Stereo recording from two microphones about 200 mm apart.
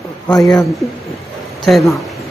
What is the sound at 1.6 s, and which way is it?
Speech, centre (ahead or behind).